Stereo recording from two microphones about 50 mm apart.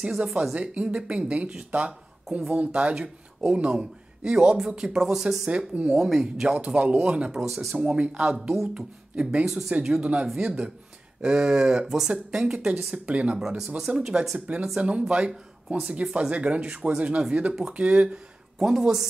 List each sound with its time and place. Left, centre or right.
0.4 s speech: right
5.5 s speech: centre
6.4 s speech: right
7.3 s speech: centre
7.7 s speech: right
9.5 s speech: centre
9.9 s speech: right
10.2 s speech: centre
13.7 s speech: centre
14.8 s speech: right
18.6 s speech: centre